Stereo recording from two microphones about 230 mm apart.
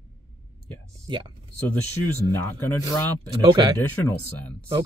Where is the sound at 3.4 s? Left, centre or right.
Right.